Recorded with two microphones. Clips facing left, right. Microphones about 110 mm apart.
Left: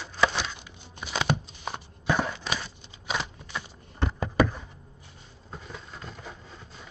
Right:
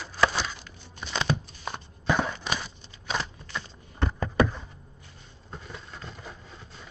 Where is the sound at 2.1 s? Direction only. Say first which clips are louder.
Right 1 dB; centre (ahead or behind).